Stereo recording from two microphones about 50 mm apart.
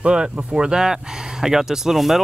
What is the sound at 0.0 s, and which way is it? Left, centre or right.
Speech, centre.